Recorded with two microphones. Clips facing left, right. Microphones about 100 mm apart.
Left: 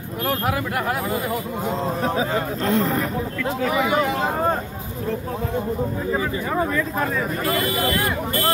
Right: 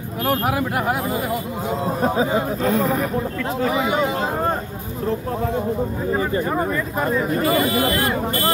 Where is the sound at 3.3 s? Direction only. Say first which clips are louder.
Left 2 dB; 30° right (ahead or behind).